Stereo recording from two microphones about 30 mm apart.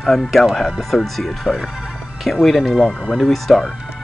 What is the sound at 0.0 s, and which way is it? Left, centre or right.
Speech, centre.